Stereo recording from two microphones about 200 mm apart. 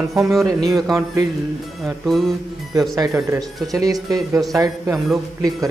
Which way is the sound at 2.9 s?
15° right (ahead or behind).